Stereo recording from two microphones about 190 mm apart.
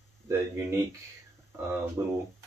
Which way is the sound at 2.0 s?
15° right (ahead or behind).